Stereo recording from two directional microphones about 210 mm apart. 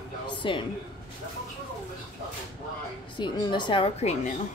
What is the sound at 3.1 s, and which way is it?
A woman's voice, 20° left (ahead or behind).